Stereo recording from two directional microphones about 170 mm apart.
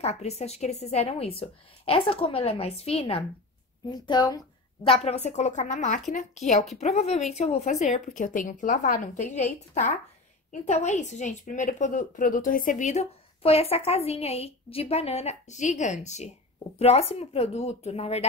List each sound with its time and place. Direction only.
0.0 s a woman's voice: 40° left (ahead or behind)
3.9 s a woman's voice: 25° left (ahead or behind)